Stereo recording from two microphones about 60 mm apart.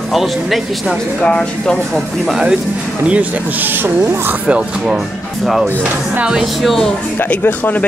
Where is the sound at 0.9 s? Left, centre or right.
Centre.